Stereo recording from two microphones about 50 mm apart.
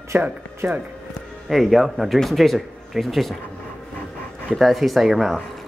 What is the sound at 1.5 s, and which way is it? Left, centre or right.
Speech, centre.